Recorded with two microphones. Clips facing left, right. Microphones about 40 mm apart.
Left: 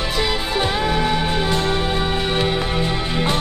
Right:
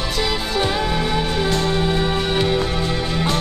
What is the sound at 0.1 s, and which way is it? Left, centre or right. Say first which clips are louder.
Music: even; centre.